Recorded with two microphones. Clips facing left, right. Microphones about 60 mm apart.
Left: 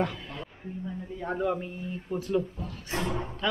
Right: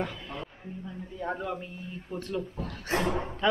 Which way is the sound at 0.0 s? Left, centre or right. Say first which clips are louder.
Left 4 dB; centre.